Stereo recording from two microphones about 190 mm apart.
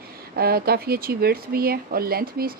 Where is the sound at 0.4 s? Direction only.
55° right (ahead or behind).